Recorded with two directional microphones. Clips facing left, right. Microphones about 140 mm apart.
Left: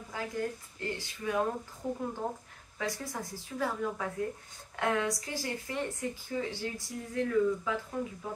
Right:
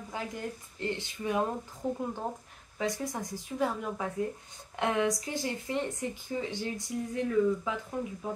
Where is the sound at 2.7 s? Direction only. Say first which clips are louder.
Right 3 dB; 20° right (ahead or behind).